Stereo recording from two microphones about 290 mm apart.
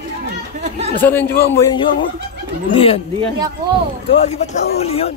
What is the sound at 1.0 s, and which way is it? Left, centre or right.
Speech, centre.